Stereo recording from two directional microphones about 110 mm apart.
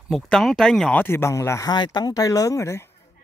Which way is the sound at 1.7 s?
40° left (ahead or behind).